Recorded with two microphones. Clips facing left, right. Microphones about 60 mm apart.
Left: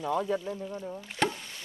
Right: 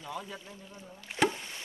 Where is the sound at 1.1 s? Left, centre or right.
Centre.